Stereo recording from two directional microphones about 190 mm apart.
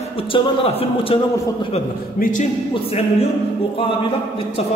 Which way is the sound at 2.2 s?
45° left (ahead or behind).